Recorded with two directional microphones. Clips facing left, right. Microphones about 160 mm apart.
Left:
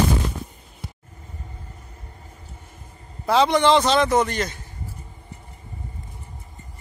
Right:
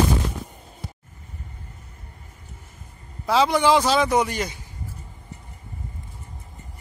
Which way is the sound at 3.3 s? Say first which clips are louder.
Left 1 dB; 5° right (ahead or behind).